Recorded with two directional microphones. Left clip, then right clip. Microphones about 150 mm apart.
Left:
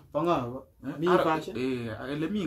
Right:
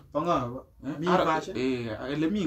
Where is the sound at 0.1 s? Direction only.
25° left (ahead or behind).